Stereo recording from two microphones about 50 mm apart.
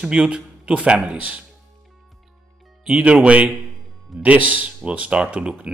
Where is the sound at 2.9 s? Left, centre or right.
Right.